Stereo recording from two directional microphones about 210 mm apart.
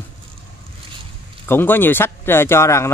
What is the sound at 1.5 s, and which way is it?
Speech, 10° left (ahead or behind).